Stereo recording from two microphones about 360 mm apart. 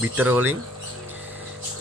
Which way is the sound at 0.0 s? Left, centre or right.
Centre.